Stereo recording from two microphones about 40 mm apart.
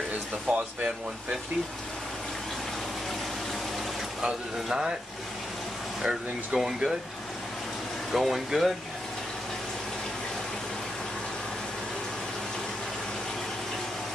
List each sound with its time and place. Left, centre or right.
0.5 s speech: right
4.2 s speech: centre
6.0 s speech: centre
8.1 s speech: centre